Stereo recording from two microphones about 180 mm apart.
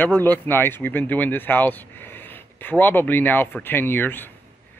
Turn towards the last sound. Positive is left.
turn(degrees=10)  # may be behind; listen again after turning